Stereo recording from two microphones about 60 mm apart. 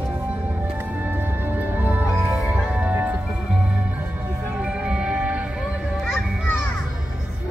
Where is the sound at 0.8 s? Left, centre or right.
Right.